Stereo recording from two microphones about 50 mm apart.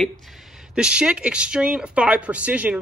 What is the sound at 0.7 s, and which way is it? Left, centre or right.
Speech, centre.